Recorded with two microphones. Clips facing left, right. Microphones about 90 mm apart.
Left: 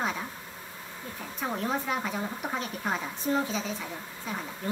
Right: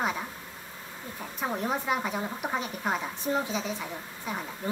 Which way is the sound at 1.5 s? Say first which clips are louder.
Right 1 dB; 10° right (ahead or behind).